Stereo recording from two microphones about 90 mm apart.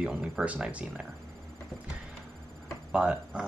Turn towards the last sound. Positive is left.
turn(degrees=-10)  # may be behind; listen again after turning